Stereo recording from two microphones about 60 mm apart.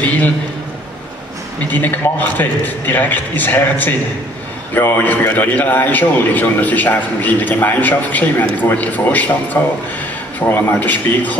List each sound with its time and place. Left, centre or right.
1.7 s a man's voice: left